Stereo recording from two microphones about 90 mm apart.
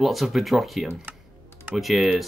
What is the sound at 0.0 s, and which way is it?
Speech, centre (ahead or behind).